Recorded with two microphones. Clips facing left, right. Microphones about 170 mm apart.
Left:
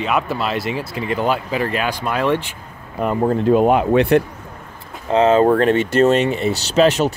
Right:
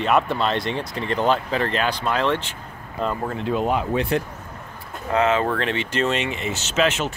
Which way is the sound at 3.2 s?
45° left (ahead or behind).